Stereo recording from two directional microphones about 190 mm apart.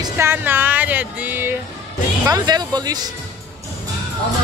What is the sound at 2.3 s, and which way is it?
Speech, 20° right (ahead or behind).